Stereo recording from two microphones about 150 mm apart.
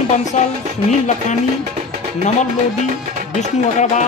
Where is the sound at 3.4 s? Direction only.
55° left (ahead or behind).